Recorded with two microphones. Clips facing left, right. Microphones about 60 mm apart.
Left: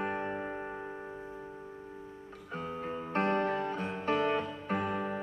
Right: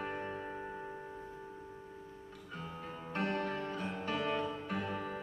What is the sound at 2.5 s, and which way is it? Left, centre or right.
Music, left.